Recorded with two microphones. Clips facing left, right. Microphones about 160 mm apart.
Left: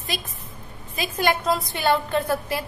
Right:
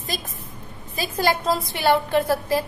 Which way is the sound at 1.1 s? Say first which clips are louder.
Right 1 dB; 30° right (ahead or behind).